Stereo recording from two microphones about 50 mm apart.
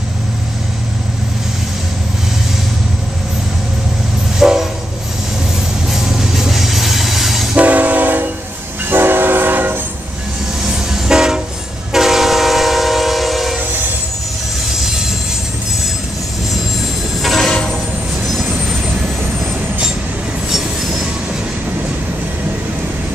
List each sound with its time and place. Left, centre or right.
4.4 s train: centre
5.9 s train: centre
7.5 s train: right
10.6 s train: centre
17.2 s music: centre
20.4 s train: centre